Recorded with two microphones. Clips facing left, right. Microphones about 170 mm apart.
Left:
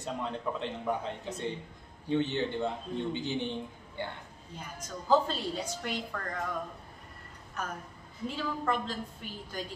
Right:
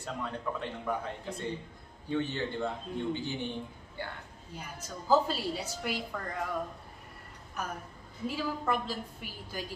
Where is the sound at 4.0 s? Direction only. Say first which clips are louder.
Left 2 dB; 20° left (ahead or behind).